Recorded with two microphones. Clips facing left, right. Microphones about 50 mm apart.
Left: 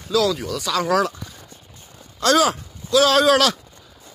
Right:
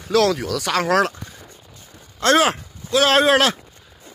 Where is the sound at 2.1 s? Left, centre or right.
Right.